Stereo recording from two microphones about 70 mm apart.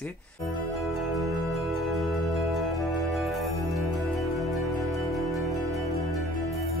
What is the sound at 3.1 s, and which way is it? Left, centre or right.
Music, centre.